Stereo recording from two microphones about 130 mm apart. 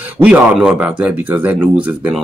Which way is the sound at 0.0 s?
10° right (ahead or behind).